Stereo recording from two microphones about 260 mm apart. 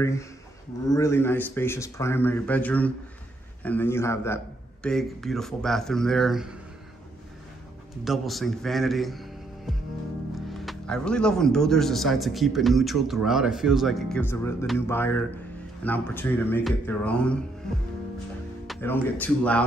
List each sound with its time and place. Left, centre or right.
0.0 s a man's voice: centre
8.0 s a man's voice: centre
18.7 s speech: centre